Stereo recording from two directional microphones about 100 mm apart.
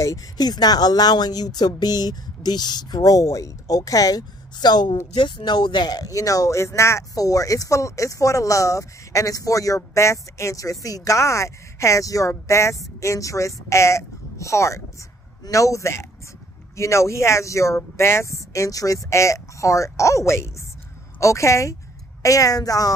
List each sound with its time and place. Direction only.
0.0 s speech: 35° left (ahead or behind)